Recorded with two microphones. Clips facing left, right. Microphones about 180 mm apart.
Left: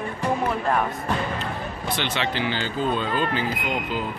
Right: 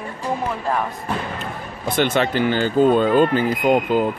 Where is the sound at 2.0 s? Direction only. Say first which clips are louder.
Right 10 dB; 50° right (ahead or behind).